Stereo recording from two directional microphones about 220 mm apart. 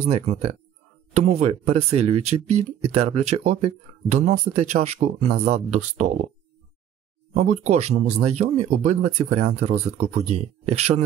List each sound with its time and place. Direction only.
0.0 s speech: 30° right (ahead or behind)
7.3 s speech: 30° right (ahead or behind)